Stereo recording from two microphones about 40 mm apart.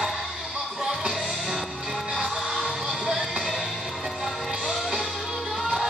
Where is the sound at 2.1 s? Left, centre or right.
Centre.